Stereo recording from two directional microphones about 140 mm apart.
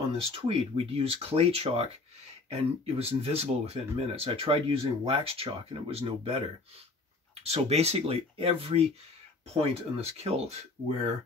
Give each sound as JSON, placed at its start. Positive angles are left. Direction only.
{"t": 0.5, "sound": "speech", "side_deg": -45}